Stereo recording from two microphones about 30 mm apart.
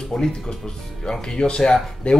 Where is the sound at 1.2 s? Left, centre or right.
Left.